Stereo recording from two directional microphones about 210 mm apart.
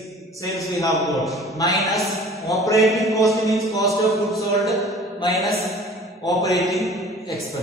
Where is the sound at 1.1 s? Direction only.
Centre (ahead or behind).